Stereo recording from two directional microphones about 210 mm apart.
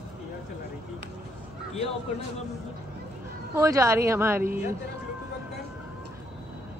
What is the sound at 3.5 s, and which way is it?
Speech, 15° right (ahead or behind).